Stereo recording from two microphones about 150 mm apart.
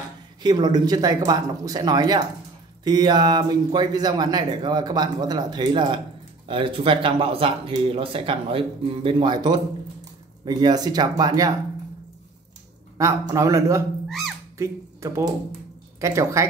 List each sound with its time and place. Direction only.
0.4 s speech: 30° right (ahead or behind)
12.9 s speech: 25° right (ahead or behind)
14.0 s speech: centre (ahead or behind)
14.6 s speech: 20° right (ahead or behind)